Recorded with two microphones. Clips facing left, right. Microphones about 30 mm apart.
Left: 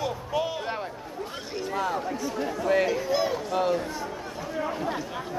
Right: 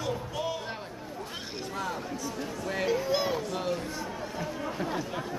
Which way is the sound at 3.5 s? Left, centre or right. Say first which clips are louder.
Left 7 dB; centre.